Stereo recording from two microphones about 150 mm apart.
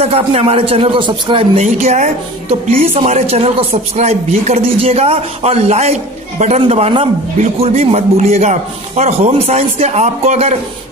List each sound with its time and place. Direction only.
0.0 s a man's voice: 45° right (ahead or behind)
1.6 s a man's voice: 50° right (ahead or behind)